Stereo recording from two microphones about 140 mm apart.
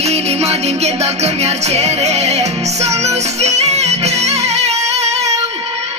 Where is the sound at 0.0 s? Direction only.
50° right (ahead or behind).